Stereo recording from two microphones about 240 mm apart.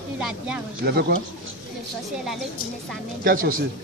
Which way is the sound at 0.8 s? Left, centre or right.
Right.